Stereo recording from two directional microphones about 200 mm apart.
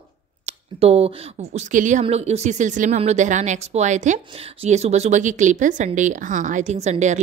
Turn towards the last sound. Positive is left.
turn(degrees=-35)  # may be behind; listen again after turning